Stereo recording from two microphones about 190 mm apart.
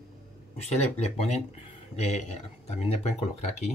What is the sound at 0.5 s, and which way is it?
Speech, 35° left (ahead or behind).